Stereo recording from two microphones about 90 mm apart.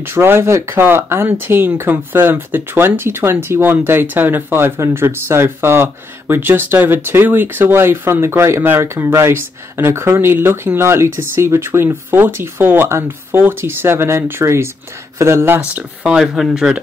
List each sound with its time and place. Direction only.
0.0 s speech: 25° right (ahead or behind)
16.2 s speech: 5° right (ahead or behind)